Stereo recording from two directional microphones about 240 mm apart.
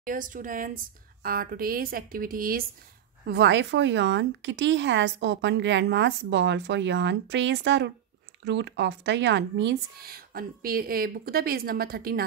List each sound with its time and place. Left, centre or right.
0.0 s speech: right